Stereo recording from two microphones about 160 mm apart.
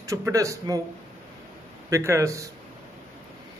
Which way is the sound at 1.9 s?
20° right (ahead or behind).